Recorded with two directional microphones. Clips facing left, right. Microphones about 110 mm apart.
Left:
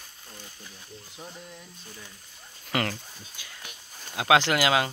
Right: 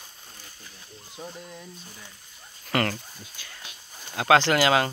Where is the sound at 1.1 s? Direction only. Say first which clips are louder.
Right 5 dB; 10° right (ahead or behind).